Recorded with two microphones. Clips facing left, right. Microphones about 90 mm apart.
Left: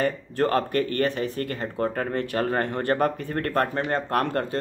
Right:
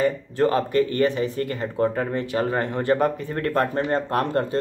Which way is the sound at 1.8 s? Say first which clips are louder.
Right 3 dB; 20° right (ahead or behind).